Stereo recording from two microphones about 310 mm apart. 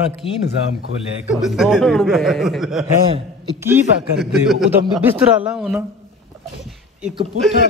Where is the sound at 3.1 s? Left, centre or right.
Centre.